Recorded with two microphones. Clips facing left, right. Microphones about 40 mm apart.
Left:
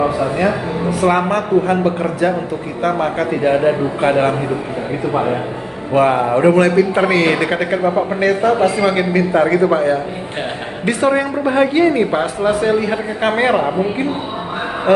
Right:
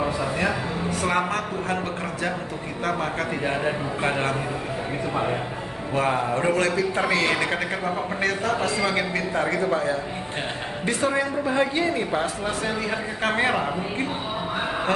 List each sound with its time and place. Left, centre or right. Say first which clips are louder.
0.0 s a man's voice: left 9 dB; centre
1.3 s a man's voice: left 11 dB; centre; by 9.6 s left
9.6 s a woman's voice: left 9 dB; left
11.0 s a woman's voice: left 8 dB; left